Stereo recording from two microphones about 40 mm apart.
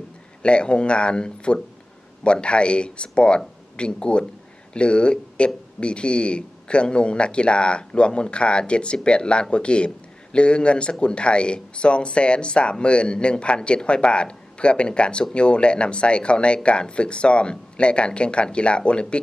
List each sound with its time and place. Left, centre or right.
0.4 s a man's voice: left